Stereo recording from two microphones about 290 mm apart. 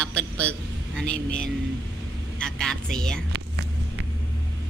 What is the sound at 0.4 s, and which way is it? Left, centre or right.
A woman's voice, centre.